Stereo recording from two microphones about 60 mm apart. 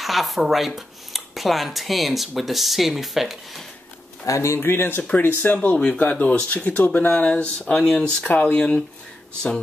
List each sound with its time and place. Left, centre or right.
0.0 s speech: centre
4.3 s speech: left
4.6 s speech: left
5.1 s speech: left